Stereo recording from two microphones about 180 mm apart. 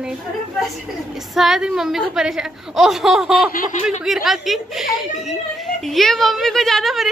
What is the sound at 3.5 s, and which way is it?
Speech, 50° left (ahead or behind).